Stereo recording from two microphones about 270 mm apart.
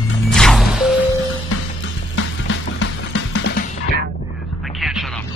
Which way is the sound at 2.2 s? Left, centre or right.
Left.